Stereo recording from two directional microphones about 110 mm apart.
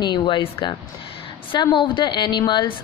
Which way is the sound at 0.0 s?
45° left (ahead or behind).